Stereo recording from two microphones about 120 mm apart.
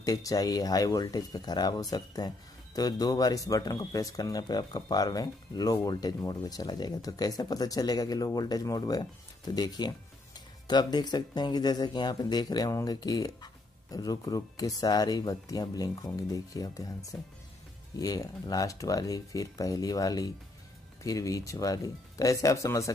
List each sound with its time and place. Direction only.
0.0 s speech: 30° left (ahead or behind)